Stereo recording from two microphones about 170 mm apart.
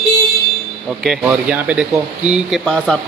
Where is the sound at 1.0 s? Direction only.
5° right (ahead or behind).